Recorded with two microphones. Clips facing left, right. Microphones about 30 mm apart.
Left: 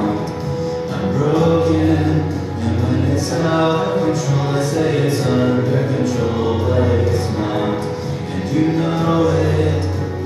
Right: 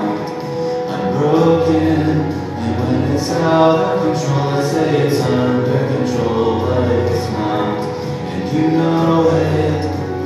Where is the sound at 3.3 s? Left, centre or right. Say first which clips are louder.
Right 5 dB; centre.